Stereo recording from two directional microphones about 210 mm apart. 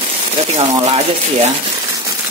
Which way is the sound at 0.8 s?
30° right (ahead or behind).